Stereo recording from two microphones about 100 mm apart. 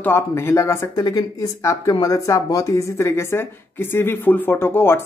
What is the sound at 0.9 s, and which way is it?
Speech, 40° left (ahead or behind).